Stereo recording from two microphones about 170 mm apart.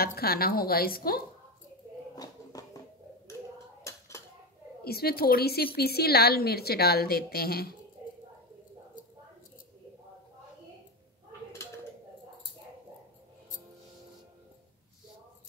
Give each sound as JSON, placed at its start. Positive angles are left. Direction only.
{"t": 0.0, "sound": "a woman's voice", "side_deg": 65}
{"t": 2.1, "sound": "a sound", "side_deg": 20}
{"t": 4.8, "sound": "a woman's voice", "side_deg": 65}